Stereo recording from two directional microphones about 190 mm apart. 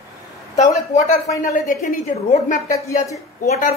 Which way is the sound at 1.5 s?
45° left (ahead or behind).